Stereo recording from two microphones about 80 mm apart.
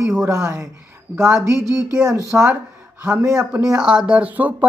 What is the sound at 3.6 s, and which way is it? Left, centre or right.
Speech, centre.